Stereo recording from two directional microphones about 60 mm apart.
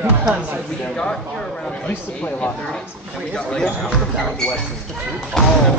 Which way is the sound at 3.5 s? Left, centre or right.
Centre.